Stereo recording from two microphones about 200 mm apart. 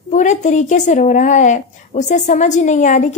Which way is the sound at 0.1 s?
35° left (ahead or behind).